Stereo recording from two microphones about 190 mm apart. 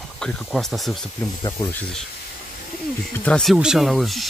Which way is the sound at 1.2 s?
15° left (ahead or behind).